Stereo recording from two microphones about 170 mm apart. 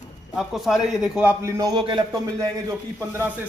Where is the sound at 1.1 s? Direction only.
15° right (ahead or behind).